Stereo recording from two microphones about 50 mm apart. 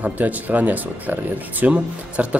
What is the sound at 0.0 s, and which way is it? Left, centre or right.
Speech, right.